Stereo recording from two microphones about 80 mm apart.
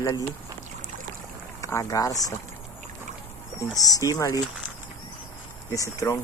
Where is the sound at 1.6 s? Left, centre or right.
Left.